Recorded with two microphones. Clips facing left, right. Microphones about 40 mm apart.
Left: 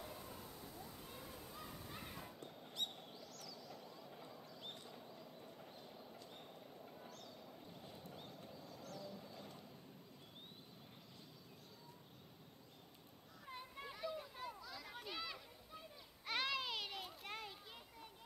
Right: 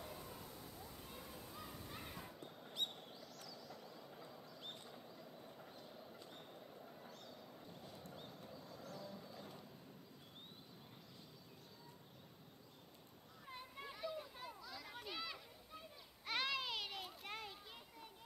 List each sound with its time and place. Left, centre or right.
0.0 s a sound: centre
8.1 s clip-clop: centre
8.8 s vehicle: centre
9.3 s music: centre
13.5 s children playing: centre